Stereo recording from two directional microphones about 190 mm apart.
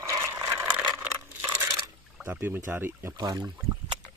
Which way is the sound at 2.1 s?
10° right (ahead or behind).